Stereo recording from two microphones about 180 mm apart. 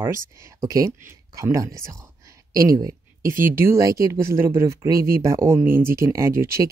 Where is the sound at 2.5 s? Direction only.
20° right (ahead or behind).